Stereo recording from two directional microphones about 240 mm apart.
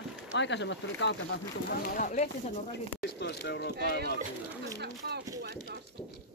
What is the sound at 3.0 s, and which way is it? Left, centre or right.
Speech, left.